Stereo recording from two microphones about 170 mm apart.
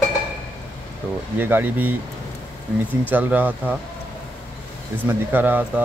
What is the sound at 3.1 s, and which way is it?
Speech, 10° right (ahead or behind).